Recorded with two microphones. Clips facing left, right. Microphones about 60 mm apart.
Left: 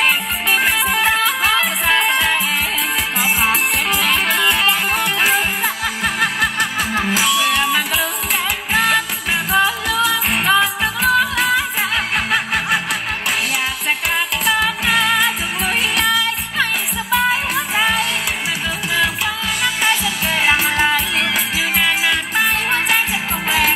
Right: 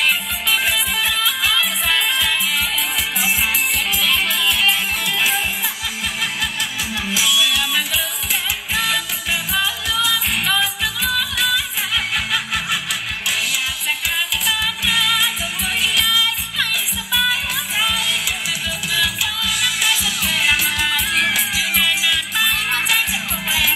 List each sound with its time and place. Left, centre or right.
0.0 s music: left
14.1 s music: left
19.6 s music: left